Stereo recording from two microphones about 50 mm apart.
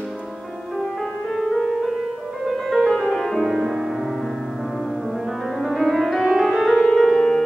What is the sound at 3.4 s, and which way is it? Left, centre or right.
Music, centre.